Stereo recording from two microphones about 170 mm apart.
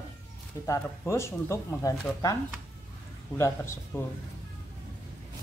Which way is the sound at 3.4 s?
15° left (ahead or behind).